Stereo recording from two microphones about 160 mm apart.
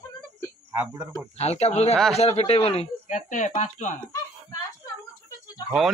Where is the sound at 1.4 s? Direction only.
40° left (ahead or behind).